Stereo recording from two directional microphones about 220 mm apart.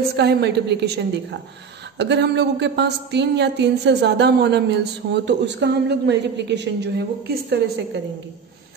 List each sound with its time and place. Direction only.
0.1 s speech: 50° right (ahead or behind)